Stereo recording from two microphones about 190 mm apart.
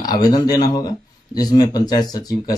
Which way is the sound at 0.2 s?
20° left (ahead or behind).